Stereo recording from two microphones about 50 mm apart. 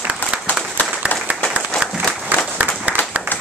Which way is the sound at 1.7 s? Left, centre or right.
Centre.